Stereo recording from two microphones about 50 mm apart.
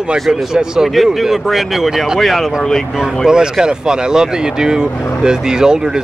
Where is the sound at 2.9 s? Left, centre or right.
Centre.